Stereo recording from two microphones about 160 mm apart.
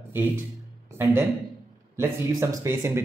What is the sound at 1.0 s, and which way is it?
Speech, 15° right (ahead or behind).